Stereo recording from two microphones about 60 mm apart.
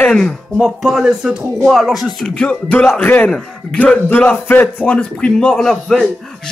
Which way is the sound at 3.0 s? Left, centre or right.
Left.